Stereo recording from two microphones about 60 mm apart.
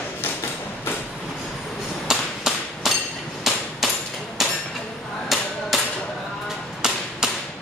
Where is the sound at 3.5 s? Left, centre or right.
Centre.